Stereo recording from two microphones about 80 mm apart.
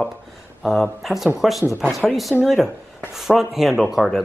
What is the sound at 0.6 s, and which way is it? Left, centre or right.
Speech, centre.